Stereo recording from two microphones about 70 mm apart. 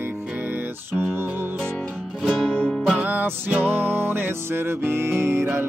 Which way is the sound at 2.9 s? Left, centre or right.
Right.